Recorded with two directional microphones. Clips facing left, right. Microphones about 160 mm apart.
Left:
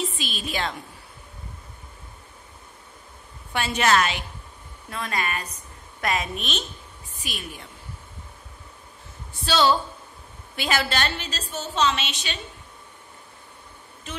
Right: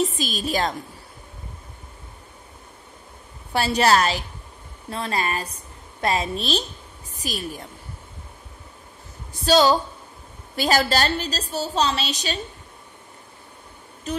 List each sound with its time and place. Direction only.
0.0 s a woman's voice: 40° right (ahead or behind)
3.5 s a woman's voice: 35° right (ahead or behind)
9.3 s a woman's voice: 40° right (ahead or behind)
14.1 s a woman's voice: 40° right (ahead or behind)